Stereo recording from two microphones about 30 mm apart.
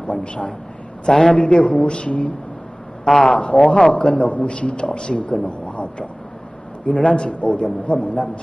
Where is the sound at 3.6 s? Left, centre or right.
Left.